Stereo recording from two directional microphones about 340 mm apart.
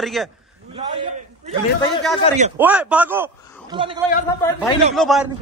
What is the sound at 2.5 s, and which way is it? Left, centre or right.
Speech, centre.